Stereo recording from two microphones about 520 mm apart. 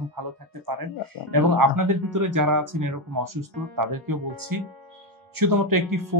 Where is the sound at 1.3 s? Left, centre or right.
Right.